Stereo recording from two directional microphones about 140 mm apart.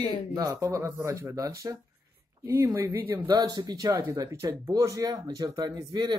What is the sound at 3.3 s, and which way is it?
Speech, 30° right (ahead or behind).